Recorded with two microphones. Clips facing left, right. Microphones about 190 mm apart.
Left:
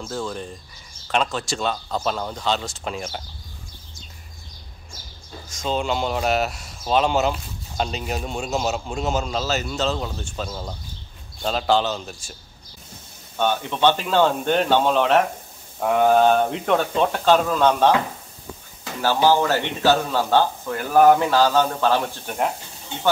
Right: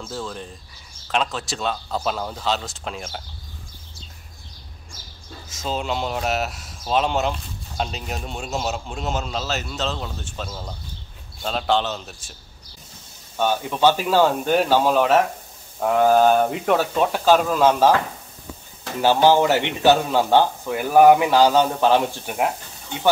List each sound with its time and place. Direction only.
0.1 s speech: centre (ahead or behind)
5.5 s speech: 5° right (ahead or behind)
13.4 s speech: 5° right (ahead or behind)
19.2 s a man's voice: 15° right (ahead or behind)